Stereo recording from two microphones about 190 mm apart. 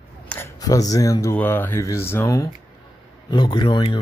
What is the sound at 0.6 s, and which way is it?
Speech, 20° left (ahead or behind).